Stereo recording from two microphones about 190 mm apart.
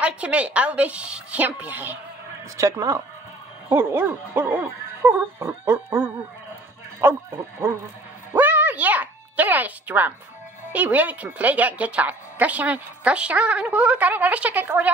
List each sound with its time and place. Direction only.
0.0 s a woman's voice: 5° right (ahead or behind)
8.3 s music: 10° right (ahead or behind)
10.7 s a woman's voice: 10° right (ahead or behind)